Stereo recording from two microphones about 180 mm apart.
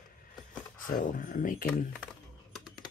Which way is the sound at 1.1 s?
45° left (ahead or behind).